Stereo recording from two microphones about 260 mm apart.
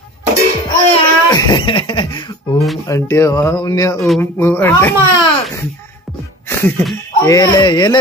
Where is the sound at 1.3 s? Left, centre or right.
Centre.